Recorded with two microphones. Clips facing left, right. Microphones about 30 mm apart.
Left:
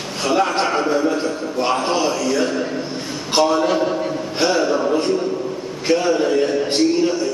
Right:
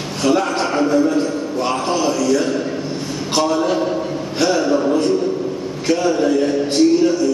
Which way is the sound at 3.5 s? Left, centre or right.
Centre.